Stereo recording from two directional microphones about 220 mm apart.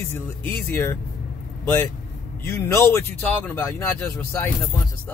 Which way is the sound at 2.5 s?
10° left (ahead or behind).